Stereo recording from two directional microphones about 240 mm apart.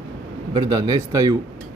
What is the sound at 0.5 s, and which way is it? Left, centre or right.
Speech, centre.